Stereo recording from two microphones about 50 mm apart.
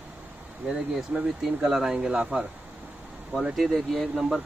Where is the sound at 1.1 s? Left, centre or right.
Right.